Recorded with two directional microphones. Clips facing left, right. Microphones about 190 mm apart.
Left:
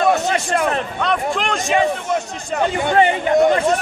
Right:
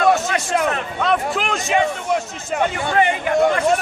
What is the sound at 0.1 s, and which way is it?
A man's voice, centre (ahead or behind).